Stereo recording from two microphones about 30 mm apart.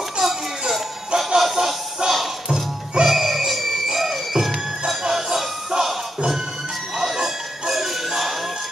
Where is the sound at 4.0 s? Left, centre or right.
Centre.